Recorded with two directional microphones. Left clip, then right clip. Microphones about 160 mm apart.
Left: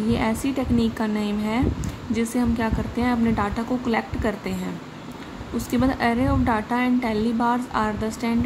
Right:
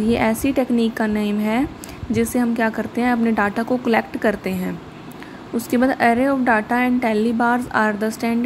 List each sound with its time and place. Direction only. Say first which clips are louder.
0.1 s a woman's voice: right 6 dB; 25° right (ahead or behind)
5.7 s a woman's voice: right 6 dB; 25° right (ahead or behind)